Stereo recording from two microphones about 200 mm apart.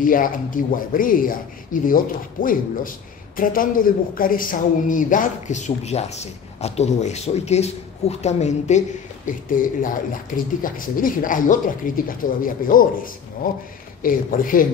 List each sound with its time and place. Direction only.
0.0 s speech: 45° left (ahead or behind)